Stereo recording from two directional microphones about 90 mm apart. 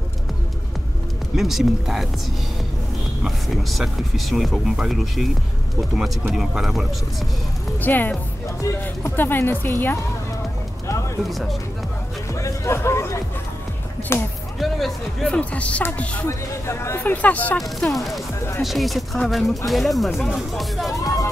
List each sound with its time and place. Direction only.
1.3 s speech: centre (ahead or behind)
3.3 s speech: centre (ahead or behind)
7.8 s speech: 20° left (ahead or behind)
8.5 s speech: 35° left (ahead or behind)
9.1 s speech: 25° left (ahead or behind)
12.4 s music: 35° left (ahead or behind)
14.1 s speech: 25° left (ahead or behind)
14.6 s speech: centre (ahead or behind)
15.3 s speech: 15° left (ahead or behind)
16.3 s speech: 30° left (ahead or behind)
17.0 s speech: 20° left (ahead or behind)
17.6 s speech: centre (ahead or behind)
20.9 s speech: 35° left (ahead or behind)